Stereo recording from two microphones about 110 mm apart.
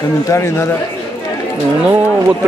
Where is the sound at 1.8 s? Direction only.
15° right (ahead or behind).